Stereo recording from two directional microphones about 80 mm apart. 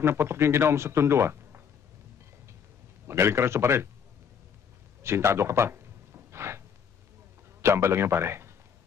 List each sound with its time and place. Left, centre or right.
0.0 s speech: right
3.1 s speech: right
5.0 s a sound: right
7.6 s speech: right